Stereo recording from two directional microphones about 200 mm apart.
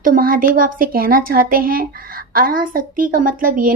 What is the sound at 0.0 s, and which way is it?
A woman's voice, 45° right (ahead or behind).